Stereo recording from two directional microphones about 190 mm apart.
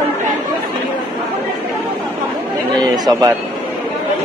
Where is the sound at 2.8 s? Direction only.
20° right (ahead or behind).